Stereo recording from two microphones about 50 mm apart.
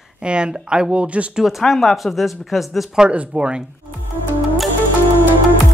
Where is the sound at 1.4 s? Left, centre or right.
Centre.